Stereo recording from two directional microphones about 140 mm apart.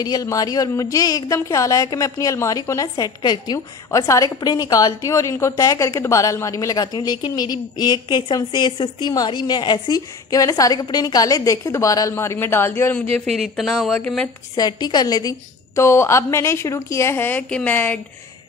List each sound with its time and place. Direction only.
0.0 s a woman's voice: 25° left (ahead or behind)
13.1 s speech: 5° left (ahead or behind)
14.5 s a woman's voice: 30° left (ahead or behind); by 17.9 s 15° left (ahead or behind)